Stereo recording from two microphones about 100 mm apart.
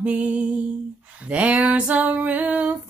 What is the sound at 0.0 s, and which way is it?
Female singing, 15° right (ahead or behind).